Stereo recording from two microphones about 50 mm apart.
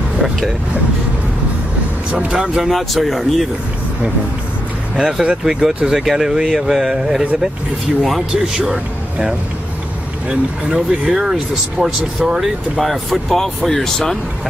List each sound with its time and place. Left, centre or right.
2.0 s speech: centre
2.7 s speech: centre
4.9 s speech: centre
10.7 s speech: centre
12.9 s speech: centre